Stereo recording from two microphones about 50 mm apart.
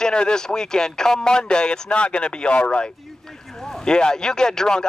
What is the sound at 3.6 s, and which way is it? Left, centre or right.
Speech, centre.